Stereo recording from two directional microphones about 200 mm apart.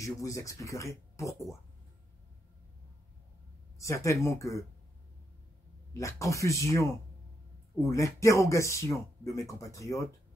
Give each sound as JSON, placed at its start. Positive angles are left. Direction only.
{"t": 0.0, "sound": "speech", "side_deg": 15}
{"t": 3.7, "sound": "speech", "side_deg": 15}
{"t": 5.9, "sound": "speech", "side_deg": 15}